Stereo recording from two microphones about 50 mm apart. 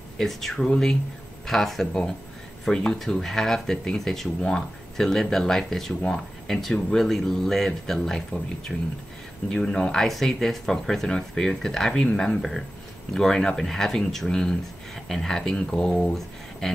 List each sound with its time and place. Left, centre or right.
0.2 s speech: centre